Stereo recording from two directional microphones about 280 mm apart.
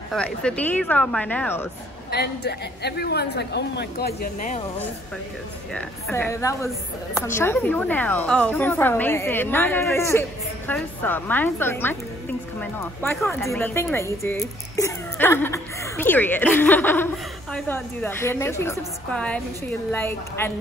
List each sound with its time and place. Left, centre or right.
0.1 s speech: centre
2.0 s a woman's voice: left
5.7 s speech: centre